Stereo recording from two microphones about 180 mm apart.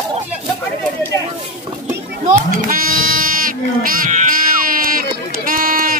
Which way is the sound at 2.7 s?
50° right (ahead or behind).